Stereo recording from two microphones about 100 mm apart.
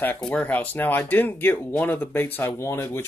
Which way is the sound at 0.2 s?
10° left (ahead or behind).